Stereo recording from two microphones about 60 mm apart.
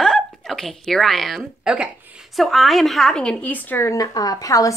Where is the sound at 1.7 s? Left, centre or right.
Centre.